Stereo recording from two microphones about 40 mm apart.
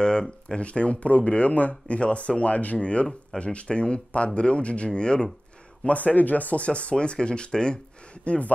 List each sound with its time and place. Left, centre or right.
0.0 s speech: centre
0.6 s speech: left
5.9 s speech: left
8.2 s speech: left